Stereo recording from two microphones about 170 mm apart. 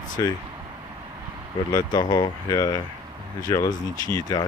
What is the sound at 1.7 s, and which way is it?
Speech, 25° left (ahead or behind).